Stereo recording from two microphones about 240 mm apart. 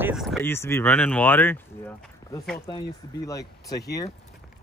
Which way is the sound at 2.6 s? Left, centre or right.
Centre.